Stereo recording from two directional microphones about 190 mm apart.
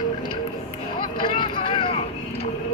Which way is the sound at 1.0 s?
25° left (ahead or behind).